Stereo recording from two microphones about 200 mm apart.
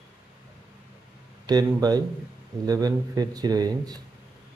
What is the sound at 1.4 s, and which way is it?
Speech, 20° right (ahead or behind).